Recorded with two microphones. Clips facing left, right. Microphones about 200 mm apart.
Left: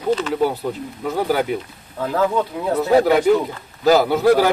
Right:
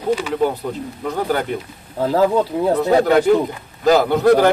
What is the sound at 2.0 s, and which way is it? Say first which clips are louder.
Speech: right 4 dB; 35° right (ahead or behind).